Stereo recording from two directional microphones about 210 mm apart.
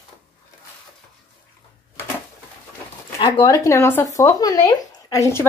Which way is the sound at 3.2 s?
20° left (ahead or behind).